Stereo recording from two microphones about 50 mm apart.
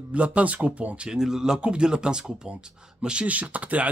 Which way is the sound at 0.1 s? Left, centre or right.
Right.